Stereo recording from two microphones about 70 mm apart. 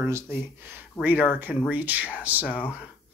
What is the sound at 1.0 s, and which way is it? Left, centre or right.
Speech, right.